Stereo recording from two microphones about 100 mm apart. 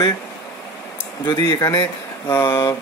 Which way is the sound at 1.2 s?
45° left (ahead or behind).